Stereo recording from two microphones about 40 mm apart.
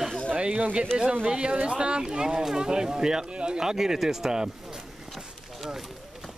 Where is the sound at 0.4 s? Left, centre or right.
Right.